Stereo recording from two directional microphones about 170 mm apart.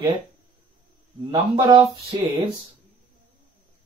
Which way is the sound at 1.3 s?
25° right (ahead or behind).